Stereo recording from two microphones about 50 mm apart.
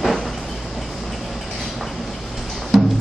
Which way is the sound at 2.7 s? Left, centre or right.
Centre.